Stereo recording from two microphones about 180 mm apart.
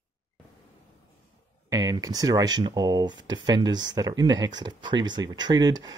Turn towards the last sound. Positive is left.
turn(degrees=-20)  # may be behind; listen again after turning